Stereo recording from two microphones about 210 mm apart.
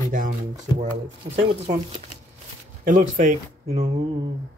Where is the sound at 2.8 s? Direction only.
35° right (ahead or behind).